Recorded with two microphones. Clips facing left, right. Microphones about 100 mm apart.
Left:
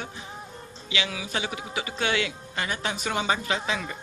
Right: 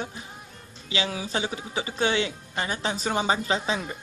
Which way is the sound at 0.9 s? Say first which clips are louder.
Right 2 dB; 35° right (ahead or behind).